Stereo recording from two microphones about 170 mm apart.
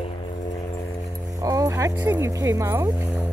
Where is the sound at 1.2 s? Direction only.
20° right (ahead or behind).